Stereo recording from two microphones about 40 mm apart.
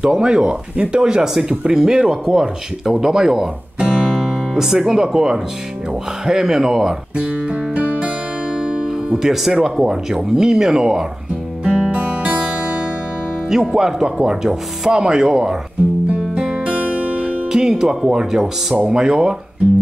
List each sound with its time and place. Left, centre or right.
0.0 s speech: right
3.8 s music: right
4.1 s speech: centre
7.7 s music: right
9.1 s speech: centre
11.6 s music: centre
11.9 s music: right
13.5 s speech: centre
14.0 s speech: right
16.3 s music: right
17.5 s speech: centre